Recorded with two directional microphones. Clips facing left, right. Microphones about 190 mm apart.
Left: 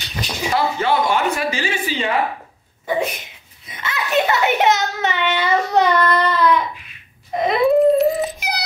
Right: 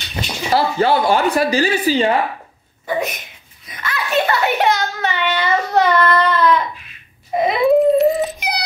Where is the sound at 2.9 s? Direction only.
30° left (ahead or behind).